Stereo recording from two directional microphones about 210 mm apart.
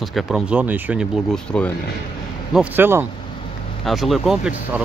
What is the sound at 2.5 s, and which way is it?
Speech, 10° right (ahead or behind).